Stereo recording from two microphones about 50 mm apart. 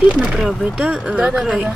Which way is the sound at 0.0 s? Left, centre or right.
Right.